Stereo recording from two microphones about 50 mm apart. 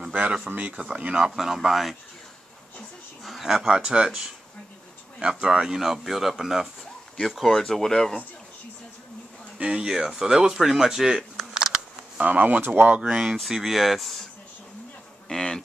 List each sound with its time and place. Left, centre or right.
0.1 s speech: right
1.1 s speech: centre
3.3 s speech: centre
3.6 s speech: centre
7.2 s speech: centre
9.6 s speech: centre
12.2 s speech: right
13.0 s speech: centre
15.2 s speech: centre